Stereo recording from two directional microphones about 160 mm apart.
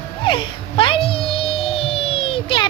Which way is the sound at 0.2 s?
30° left (ahead or behind).